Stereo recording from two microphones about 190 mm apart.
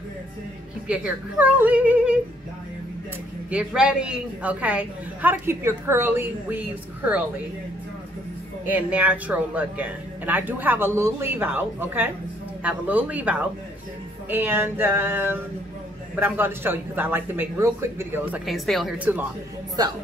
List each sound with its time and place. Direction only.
0.8 s speech: 5° right (ahead or behind)
3.4 s speech: 5° right (ahead or behind)
8.6 s speech: 10° right (ahead or behind)
18.4 s a woman's voice: centre (ahead or behind)